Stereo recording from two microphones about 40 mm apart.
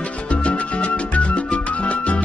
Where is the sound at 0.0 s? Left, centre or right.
Left.